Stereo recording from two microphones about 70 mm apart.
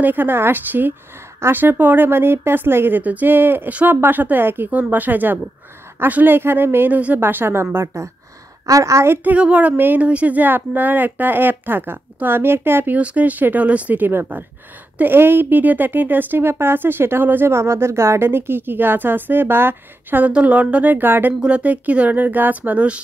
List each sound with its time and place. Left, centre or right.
0.0 s speech: right
7.7 s a woman's voice: right
9.1 s speech: right
12.9 s speech: right
21.4 s speech: centre